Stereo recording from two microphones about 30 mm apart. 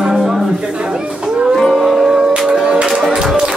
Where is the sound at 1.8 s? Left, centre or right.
Centre.